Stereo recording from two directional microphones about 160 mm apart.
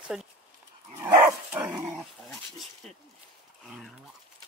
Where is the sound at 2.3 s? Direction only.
Centre (ahead or behind).